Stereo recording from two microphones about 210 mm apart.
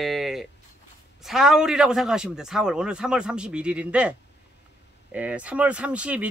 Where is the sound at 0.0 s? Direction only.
Centre (ahead or behind).